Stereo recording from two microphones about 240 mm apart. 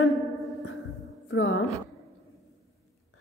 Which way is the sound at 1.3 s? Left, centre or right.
Left.